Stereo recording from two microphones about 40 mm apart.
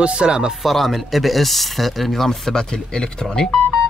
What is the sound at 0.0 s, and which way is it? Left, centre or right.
Speech, right.